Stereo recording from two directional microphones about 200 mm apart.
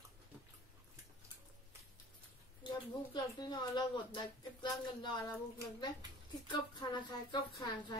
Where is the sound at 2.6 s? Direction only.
20° left (ahead or behind).